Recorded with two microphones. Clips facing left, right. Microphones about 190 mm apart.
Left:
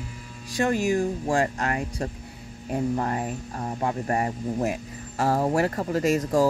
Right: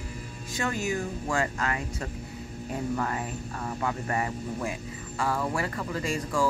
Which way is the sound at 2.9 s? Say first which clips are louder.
Left 4 dB; 35° left (ahead or behind).